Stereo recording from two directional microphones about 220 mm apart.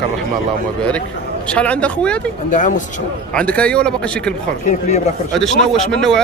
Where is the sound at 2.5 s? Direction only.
35° left (ahead or behind).